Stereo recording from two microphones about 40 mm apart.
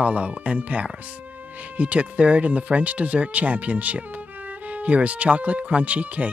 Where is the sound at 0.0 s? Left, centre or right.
Right.